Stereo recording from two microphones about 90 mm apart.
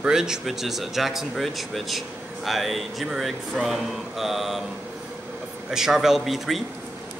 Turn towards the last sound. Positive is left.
turn(degrees=0)  # may be behind; listen again after turning